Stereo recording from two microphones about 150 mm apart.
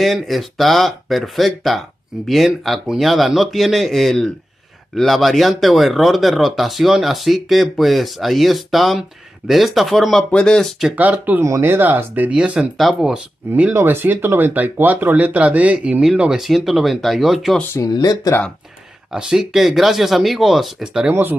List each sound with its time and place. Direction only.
0.0 s speech: centre (ahead or behind)
11.0 s speech: 10° right (ahead or behind)
17.7 s speech: 25° left (ahead or behind)
19.1 s speech: 5° right (ahead or behind)